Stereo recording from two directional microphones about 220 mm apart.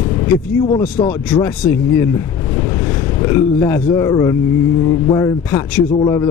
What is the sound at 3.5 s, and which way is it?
Speech, 10° left (ahead or behind).